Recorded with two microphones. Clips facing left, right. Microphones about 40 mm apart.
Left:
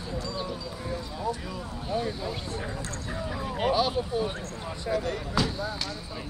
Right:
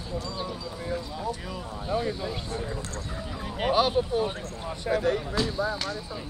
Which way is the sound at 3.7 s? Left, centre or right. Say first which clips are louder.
Right 4 dB; right.